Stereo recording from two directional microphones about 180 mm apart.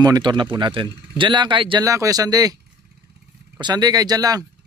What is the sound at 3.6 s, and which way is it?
Speech, 20° right (ahead or behind).